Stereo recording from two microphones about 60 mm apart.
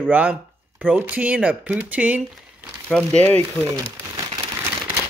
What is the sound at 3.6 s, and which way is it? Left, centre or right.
Speech, left.